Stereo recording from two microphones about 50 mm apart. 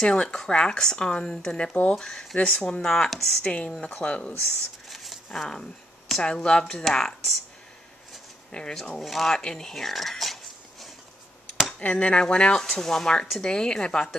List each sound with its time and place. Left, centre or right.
0.0 s speech: centre
2.0 s speech: centre
2.3 s speech: centre
3.4 s speech: left
4.8 s a sound: centre
6.2 s speech: centre
8.5 s speech: centre
9.0 s speech: centre
11.8 s speech: left